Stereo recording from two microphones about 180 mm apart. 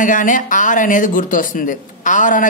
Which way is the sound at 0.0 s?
45° left (ahead or behind).